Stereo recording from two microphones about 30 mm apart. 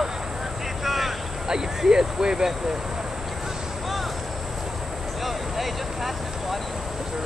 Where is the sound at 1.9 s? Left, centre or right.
Right.